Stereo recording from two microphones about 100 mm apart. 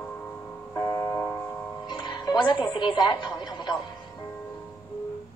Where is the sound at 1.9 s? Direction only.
50° left (ahead or behind).